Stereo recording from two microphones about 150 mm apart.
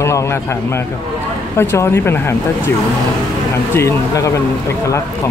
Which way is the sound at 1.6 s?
15° left (ahead or behind).